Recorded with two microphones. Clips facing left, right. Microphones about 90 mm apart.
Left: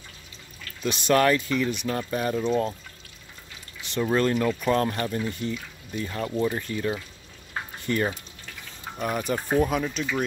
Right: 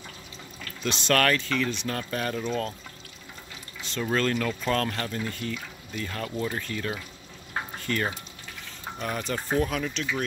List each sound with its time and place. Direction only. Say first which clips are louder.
0.8 s speech: left 3 dB; 15° left (ahead or behind)
3.9 s speech: left 3 dB; 15° left (ahead or behind)
8.9 s speech: left 4 dB; 10° left (ahead or behind)